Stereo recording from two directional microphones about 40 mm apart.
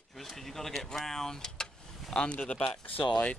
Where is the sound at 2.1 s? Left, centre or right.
Left.